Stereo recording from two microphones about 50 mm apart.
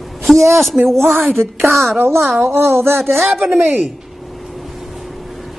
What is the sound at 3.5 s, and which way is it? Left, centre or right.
Speech, right.